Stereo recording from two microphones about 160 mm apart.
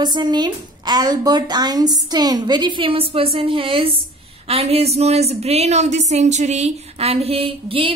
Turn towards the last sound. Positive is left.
turn(degrees=-35)  # may be behind; listen again after turning